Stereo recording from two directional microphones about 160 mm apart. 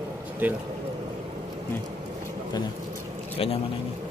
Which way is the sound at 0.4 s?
10° right (ahead or behind).